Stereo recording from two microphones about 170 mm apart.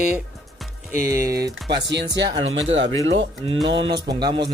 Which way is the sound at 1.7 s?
90° right.